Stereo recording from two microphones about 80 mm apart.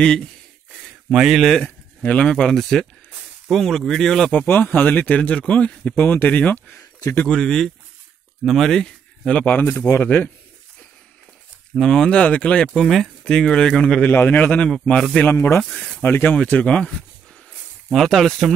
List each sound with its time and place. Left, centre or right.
1.1 s speech: centre
4.3 s speech: left
7.2 s speech: centre
9.4 s speech: left
11.7 s speech: centre
12.8 s speech: centre
14.1 s speech: left
15.6 s speech: centre
16.0 s speech: left
16.3 s speech: centre
17.9 s speech: centre